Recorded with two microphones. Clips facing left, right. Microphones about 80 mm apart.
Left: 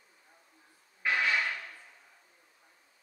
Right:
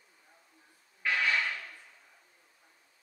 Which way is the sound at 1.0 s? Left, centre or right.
Centre.